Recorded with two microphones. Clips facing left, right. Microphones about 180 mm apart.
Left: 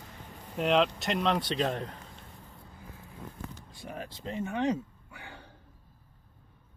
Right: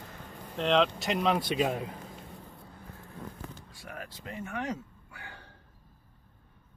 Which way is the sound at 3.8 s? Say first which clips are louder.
Left 4 dB; 30° left (ahead or behind).